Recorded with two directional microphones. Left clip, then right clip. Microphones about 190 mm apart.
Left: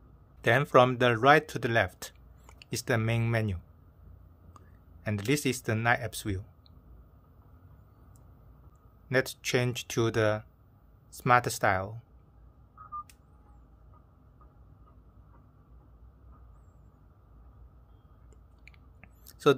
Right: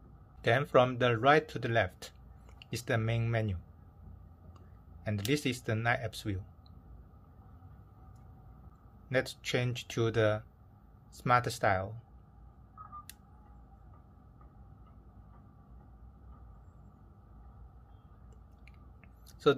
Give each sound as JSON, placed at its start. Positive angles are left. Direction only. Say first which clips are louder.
{"t": 0.4, "sound": "speech", "louder": "left 4 dB", "side_deg": 25}
{"t": 4.6, "sound": "speech", "louder": "left 3 dB", "side_deg": 25}
{"t": 9.1, "sound": "speech", "louder": "left 4 dB", "side_deg": 25}
{"t": 18.7, "sound": "clicking", "louder": "left 6 dB", "side_deg": 30}